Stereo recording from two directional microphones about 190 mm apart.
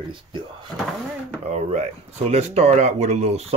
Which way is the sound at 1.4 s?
35° right (ahead or behind).